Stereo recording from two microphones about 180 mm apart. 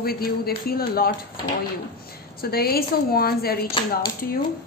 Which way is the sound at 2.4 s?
60° left (ahead or behind).